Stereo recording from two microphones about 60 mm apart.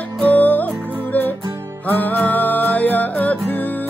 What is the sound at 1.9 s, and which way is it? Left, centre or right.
Music, left.